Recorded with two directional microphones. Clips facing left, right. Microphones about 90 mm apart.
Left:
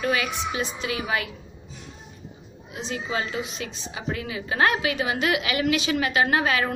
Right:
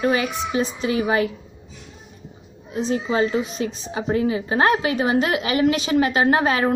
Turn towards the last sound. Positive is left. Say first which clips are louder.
# right 4 dB
turn(degrees=-35)  # may be behind; listen again after turning